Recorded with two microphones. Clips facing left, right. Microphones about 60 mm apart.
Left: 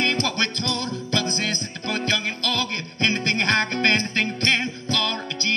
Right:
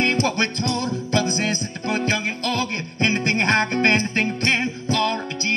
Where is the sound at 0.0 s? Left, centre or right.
Right.